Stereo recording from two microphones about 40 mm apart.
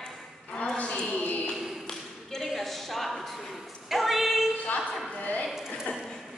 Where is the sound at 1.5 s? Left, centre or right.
Centre.